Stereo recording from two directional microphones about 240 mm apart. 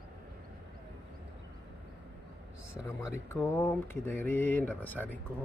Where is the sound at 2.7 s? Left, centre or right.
Centre.